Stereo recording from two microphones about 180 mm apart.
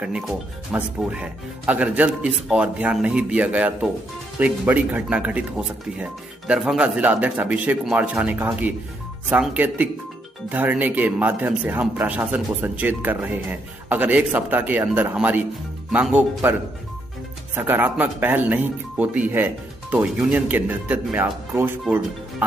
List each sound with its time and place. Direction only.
0.0 s speech: 5° right (ahead or behind)
17.6 s speech: 10° right (ahead or behind)